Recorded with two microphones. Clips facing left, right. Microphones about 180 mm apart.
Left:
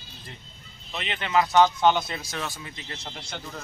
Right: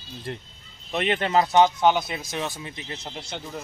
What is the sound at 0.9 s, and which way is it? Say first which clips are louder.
Speech: right 6 dB; 50° right (ahead or behind).